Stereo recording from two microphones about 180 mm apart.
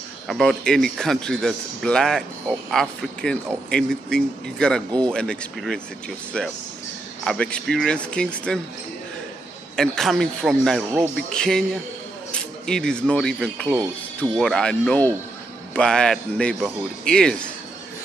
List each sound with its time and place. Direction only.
0.3 s a man's voice: centre (ahead or behind)
9.8 s a man's voice: centre (ahead or behind)